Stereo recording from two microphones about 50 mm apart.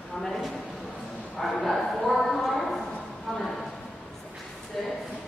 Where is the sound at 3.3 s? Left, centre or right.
Centre.